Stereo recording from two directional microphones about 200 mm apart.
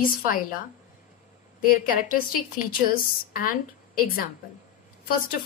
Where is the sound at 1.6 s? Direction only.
45° left (ahead or behind).